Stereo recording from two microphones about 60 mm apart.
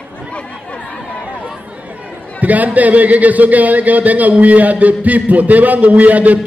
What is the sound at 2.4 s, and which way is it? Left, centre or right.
A man's voice, right.